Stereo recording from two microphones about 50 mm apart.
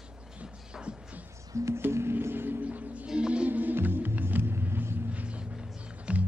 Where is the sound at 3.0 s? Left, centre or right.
Centre.